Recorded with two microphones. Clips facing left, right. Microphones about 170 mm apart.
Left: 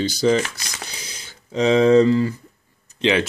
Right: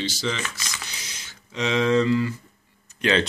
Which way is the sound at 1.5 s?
35° left (ahead or behind).